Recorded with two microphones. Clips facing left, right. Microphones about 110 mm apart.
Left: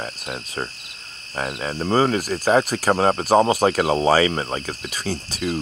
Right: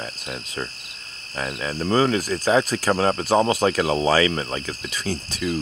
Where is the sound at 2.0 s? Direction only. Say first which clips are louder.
Left 1 dB; 45° left (ahead or behind).